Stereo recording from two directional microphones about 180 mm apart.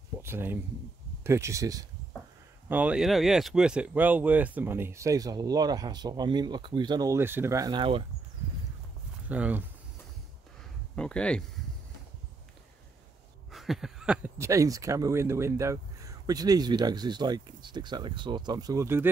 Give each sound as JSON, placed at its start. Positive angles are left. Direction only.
{"t": 0.2, "sound": "speech", "side_deg": -15}
{"t": 2.7, "sound": "speech", "side_deg": -5}
{"t": 9.3, "sound": "speech", "side_deg": -10}
{"t": 11.0, "sound": "speech", "side_deg": 5}
{"t": 13.5, "sound": "a sound", "side_deg": 0}
{"t": 14.4, "sound": "speech", "side_deg": -15}